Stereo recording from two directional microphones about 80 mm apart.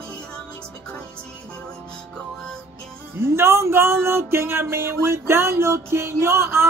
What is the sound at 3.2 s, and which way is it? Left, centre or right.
Music, right.